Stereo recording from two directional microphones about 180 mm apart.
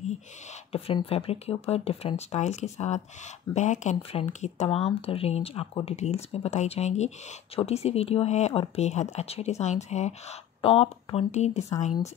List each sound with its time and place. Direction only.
0.7 s speech: 35° left (ahead or behind)